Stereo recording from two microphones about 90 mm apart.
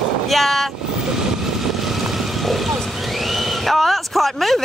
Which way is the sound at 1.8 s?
Centre (ahead or behind).